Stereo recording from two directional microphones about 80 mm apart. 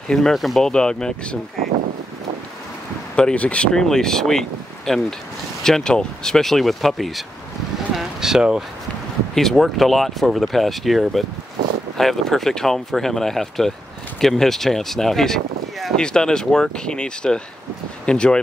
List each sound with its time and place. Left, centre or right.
0.1 s speech: centre
3.2 s speech: centre
7.9 s boat: centre
9.3 s speech: centre